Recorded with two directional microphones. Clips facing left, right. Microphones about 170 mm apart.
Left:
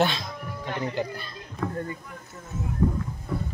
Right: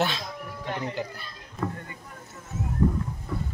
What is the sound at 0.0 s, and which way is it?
Speech, 5° right (ahead or behind).